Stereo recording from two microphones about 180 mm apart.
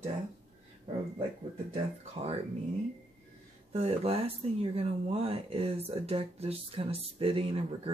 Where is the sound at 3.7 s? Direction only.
35° right (ahead or behind).